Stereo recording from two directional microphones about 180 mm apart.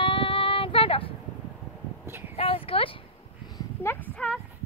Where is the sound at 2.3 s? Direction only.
30° left (ahead or behind).